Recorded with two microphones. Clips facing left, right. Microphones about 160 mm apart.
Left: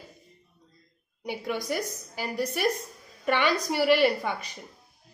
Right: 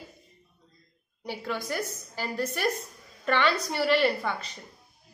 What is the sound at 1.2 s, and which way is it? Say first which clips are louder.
Speech: left 2 dB; 15° left (ahead or behind).